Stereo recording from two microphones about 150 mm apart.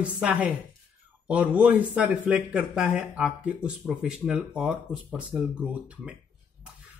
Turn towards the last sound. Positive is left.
turn(degrees=-5)  # may be behind; listen again after turning